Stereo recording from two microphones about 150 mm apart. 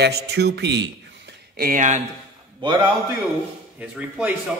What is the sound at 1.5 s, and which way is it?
Speech, 75° right (ahead or behind).